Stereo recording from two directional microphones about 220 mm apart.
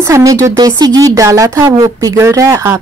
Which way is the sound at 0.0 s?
15° right (ahead or behind).